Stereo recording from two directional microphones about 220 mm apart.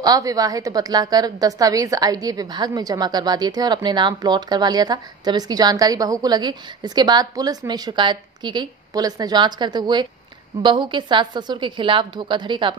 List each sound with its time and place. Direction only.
0.0 s a woman's voice: 15° right (ahead or behind)